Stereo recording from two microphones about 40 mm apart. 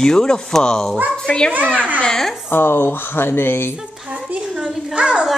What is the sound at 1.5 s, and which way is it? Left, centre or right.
Speech, right.